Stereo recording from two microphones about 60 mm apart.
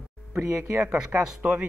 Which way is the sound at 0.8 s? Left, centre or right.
Centre.